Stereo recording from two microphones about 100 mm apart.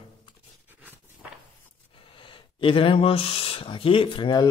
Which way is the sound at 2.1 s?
60° left (ahead or behind).